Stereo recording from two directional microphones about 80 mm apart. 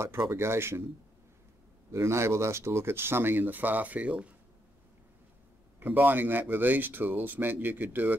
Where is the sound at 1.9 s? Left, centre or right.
Right; by 4.3 s centre.